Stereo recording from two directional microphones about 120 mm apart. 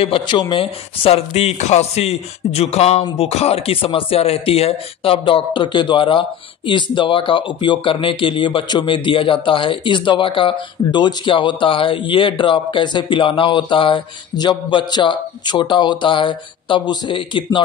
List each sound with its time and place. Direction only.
0.0 s speech: 50° left (ahead or behind)
0.4 s speech: 40° left (ahead or behind)
1.0 s speech: 60° left (ahead or behind); by 17.6 s 45° left (ahead or behind)